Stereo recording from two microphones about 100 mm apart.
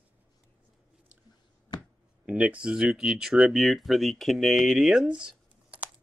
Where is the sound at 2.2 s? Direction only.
15° right (ahead or behind).